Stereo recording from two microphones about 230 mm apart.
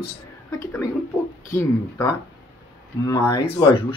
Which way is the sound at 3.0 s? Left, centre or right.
Centre.